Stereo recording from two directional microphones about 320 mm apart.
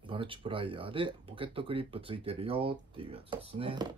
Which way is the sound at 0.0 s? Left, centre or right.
Centre.